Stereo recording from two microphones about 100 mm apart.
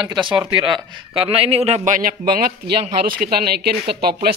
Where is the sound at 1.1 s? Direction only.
70° right (ahead or behind); by 1.8 s 90° right.